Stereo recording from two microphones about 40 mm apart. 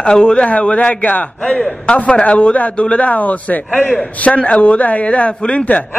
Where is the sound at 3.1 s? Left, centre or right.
Left.